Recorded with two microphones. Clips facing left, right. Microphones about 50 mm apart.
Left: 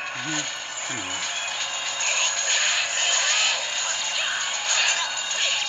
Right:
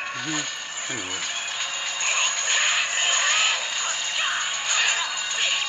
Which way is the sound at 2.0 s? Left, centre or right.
Centre.